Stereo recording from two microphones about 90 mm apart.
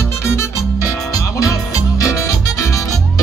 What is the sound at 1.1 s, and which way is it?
Music, 40° left (ahead or behind).